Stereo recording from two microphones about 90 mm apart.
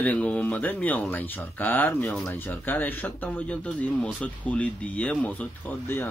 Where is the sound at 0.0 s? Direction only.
15° left (ahead or behind).